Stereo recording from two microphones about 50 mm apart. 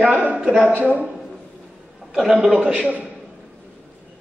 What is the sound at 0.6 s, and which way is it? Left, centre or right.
Speech, right.